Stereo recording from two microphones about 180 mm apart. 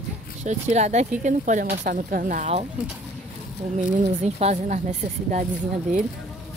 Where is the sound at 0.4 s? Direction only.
40° right (ahead or behind).